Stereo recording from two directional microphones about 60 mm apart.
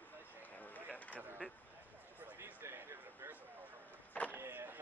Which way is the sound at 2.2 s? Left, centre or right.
Right.